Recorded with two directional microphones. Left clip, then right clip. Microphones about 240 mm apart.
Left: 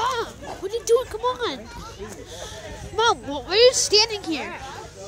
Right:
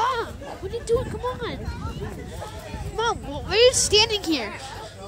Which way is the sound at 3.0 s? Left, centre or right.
Centre.